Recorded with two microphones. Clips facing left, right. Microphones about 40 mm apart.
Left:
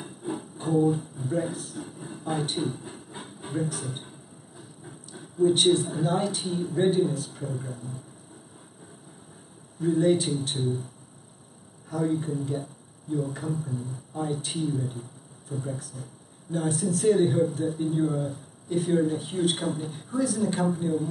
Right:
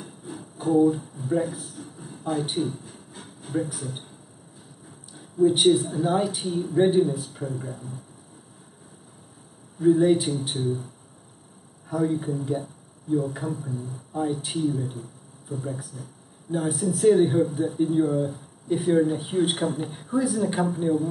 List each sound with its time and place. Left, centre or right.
0.0 s music: centre
0.8 s a sound: centre
1.4 s speech: centre
2.8 s vehicle: left
5.1 s a sound: centre
5.5 s speech: centre
9.8 s speech: centre
11.9 s speech: centre
14.9 s a sound: centre
15.7 s speech: centre